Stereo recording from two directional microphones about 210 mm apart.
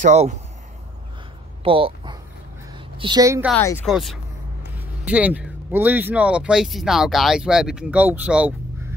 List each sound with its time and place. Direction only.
0.0 s speech: 35° right (ahead or behind)
1.6 s a sound: 25° right (ahead or behind)
3.0 s a woman's voice: 20° right (ahead or behind)
3.5 s speech: 10° left (ahead or behind)
3.8 s speech: centre (ahead or behind)